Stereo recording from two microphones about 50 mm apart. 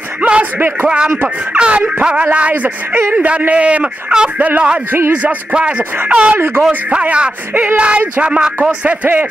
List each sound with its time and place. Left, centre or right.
0.2 s a sound: right
0.8 s speech: centre
8.8 s speech: right